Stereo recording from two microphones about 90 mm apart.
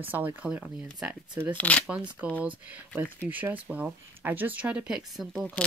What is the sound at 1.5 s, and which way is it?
Speech, 15° left (ahead or behind).